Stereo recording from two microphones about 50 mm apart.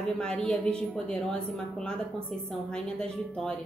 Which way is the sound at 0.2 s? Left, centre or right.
Centre.